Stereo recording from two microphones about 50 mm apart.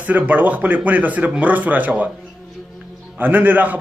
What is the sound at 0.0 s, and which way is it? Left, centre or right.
A man's voice, right.